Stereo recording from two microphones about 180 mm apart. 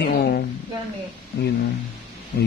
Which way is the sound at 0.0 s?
60° left (ahead or behind).